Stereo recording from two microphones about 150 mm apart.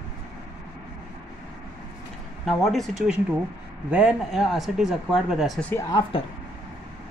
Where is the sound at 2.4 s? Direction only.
Centre (ahead or behind).